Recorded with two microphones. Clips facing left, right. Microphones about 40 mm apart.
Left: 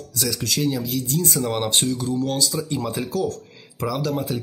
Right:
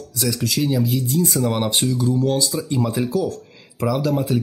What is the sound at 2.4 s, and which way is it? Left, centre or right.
Speech, centre.